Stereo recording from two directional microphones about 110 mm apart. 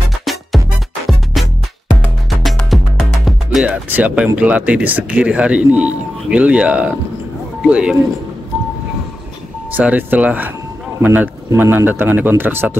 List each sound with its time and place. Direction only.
0.2 s music: centre (ahead or behind)
3.6 s speech: 15° right (ahead or behind)
9.8 s speech: 15° right (ahead or behind)